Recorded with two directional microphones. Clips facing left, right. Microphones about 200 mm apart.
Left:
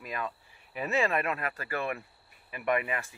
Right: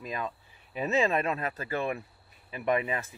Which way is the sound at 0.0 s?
20° right (ahead or behind).